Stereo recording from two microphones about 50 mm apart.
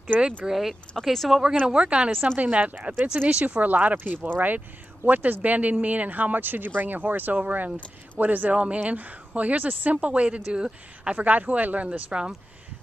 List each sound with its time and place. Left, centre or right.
0.5 s speech: centre
1.7 s a woman's voice: right
11.1 s speech: right